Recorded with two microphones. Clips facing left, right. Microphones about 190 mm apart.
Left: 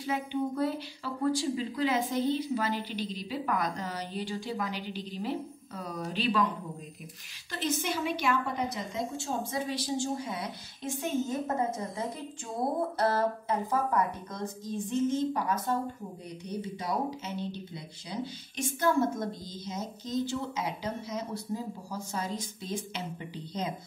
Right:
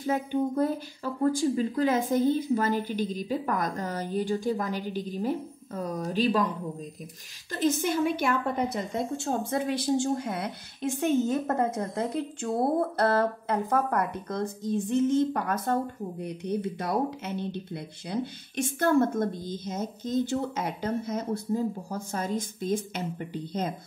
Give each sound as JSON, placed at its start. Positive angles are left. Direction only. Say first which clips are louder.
{"t": 0.0, "sound": "speech", "louder": "right 4 dB", "side_deg": -45}
{"t": 7.8, "sound": "a woman's voice", "louder": "right 5 dB", "side_deg": -50}